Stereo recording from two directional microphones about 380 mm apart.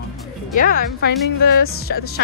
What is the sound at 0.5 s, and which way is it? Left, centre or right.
Speech, left.